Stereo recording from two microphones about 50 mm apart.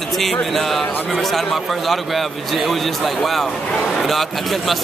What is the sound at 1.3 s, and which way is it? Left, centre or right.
Speech, centre.